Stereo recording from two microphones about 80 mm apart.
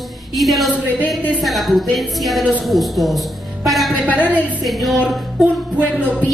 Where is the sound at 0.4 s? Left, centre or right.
Centre.